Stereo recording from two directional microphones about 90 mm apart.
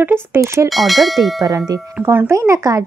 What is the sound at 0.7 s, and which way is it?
Speech, centre (ahead or behind).